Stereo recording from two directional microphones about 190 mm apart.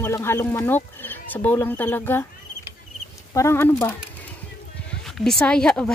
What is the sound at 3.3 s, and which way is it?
Speech, 15° left (ahead or behind).